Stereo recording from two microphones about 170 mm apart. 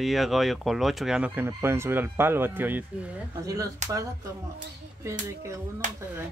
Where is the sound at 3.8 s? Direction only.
45° right (ahead or behind).